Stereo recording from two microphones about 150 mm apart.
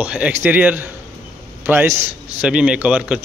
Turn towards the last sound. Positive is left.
turn(degrees=-10)  # may be behind; listen again after turning